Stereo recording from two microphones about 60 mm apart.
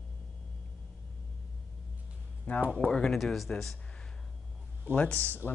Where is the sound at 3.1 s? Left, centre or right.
Centre.